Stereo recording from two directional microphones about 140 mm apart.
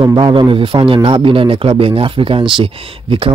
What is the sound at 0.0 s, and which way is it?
A man's voice, 35° right (ahead or behind).